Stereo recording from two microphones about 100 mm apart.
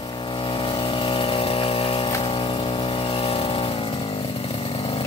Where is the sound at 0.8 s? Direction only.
60° left (ahead or behind).